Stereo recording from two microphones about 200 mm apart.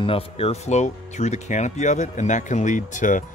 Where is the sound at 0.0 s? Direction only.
30° left (ahead or behind).